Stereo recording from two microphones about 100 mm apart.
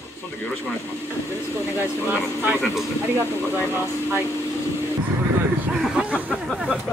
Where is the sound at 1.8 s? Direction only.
20° right (ahead or behind).